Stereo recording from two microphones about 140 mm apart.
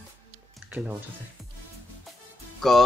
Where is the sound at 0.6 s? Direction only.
10° right (ahead or behind).